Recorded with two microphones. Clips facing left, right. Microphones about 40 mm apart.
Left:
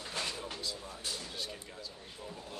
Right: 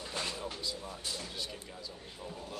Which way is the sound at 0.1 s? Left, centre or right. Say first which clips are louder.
Even; right.